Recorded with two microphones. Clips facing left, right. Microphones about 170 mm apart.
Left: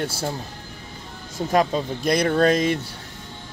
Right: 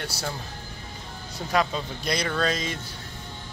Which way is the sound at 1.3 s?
45° left (ahead or behind).